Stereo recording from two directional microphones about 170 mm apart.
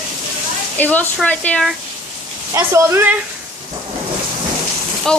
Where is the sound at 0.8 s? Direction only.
10° left (ahead or behind).